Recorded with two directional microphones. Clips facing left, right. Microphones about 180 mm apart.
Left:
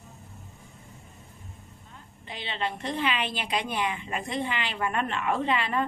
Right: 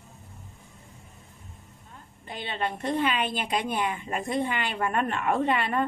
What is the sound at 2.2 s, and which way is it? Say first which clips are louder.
A woman's voice: right 1 dB; 50° right (ahead or behind).